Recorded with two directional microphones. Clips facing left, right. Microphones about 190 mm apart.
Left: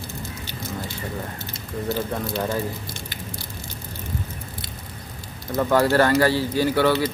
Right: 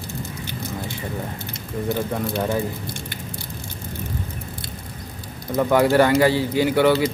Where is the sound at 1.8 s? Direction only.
15° right (ahead or behind).